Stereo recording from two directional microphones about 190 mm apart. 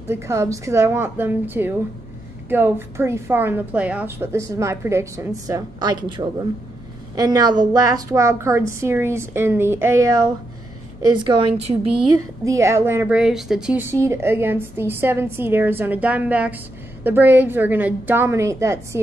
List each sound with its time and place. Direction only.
0.1 s a woman's voice: 15° right (ahead or behind)
12.4 s a woman's voice: 15° right (ahead or behind)